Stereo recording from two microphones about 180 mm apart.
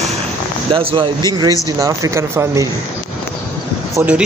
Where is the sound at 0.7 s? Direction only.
30° right (ahead or behind).